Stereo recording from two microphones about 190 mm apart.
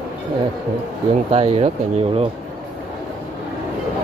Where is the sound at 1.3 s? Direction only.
30° right (ahead or behind).